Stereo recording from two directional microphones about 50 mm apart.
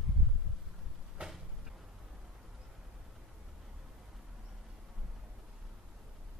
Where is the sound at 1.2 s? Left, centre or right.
Right.